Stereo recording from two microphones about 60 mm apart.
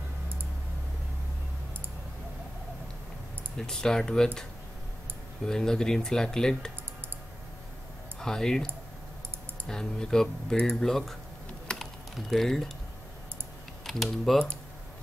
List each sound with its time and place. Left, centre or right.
3.5 s speech: centre
5.5 s speech: centre
8.2 s speech: centre
10.9 s speech: centre
11.8 s typing: centre
13.8 s speech: centre